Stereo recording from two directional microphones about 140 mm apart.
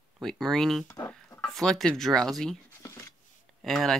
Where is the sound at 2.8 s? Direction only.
20° left (ahead or behind).